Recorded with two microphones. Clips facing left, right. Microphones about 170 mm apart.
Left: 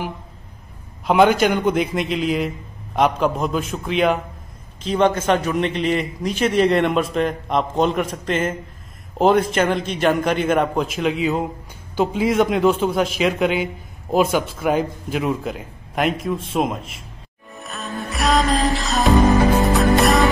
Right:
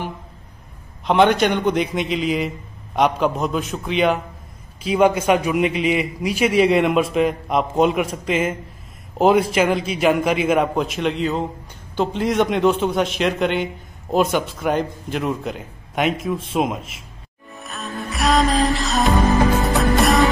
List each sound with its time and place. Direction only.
1.0 s a man's voice: 5° left (ahead or behind)
17.6 s music: centre (ahead or behind)